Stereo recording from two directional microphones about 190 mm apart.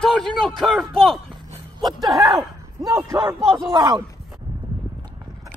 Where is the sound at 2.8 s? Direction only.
20° right (ahead or behind).